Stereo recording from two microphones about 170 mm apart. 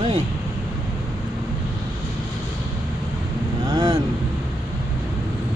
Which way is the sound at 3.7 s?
25° right (ahead or behind).